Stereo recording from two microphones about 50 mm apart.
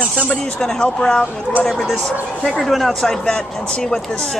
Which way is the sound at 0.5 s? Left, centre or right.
Centre.